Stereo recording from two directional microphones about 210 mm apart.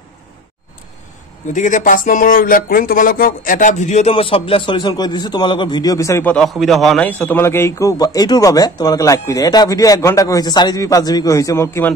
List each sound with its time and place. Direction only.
1.5 s speech: 35° left (ahead or behind); by 11.9 s 10° left (ahead or behind)